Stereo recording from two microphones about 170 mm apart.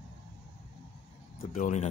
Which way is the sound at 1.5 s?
45° left (ahead or behind).